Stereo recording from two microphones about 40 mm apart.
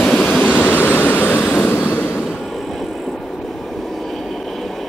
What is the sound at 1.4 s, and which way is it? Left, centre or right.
Vehicle, left.